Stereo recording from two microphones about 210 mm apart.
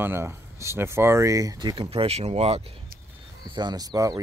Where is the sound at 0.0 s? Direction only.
10° right (ahead or behind).